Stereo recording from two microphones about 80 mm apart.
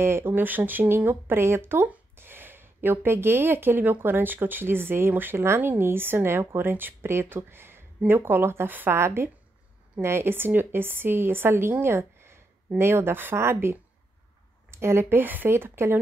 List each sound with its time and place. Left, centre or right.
0.0 s speech: right